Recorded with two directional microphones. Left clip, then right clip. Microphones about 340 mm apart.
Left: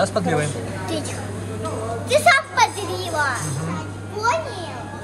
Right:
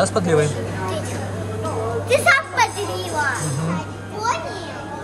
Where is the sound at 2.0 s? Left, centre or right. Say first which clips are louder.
Left 1 dB; centre.